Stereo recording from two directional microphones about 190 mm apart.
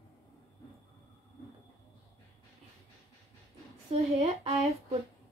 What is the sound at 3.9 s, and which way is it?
Speech, 35° right (ahead or behind).